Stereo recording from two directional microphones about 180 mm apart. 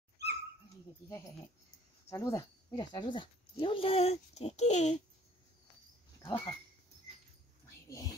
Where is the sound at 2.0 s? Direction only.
15° left (ahead or behind); by 5.0 s 40° left (ahead or behind).